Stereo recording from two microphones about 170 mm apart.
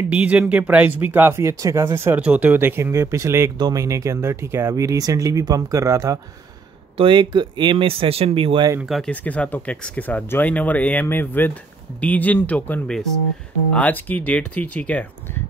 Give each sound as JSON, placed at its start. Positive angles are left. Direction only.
{"t": 0.1, "sound": "speech", "side_deg": -10}
{"t": 7.0, "sound": "speech", "side_deg": -30}
{"t": 8.8, "sound": "speech", "side_deg": 0}